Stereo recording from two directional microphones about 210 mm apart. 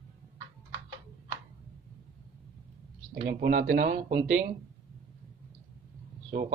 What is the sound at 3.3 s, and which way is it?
Speech, 50° right (ahead or behind).